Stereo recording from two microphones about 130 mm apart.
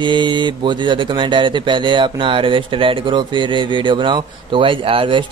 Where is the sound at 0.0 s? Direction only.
35° right (ahead or behind).